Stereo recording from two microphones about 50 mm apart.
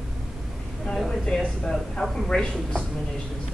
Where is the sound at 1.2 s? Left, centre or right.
Centre.